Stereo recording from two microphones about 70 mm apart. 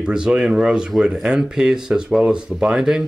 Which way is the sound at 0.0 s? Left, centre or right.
Centre.